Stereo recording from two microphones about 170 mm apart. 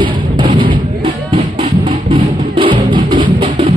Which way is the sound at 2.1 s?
30° right (ahead or behind).